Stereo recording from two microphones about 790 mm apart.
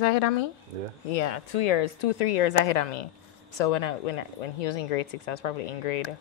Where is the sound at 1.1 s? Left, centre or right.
Left.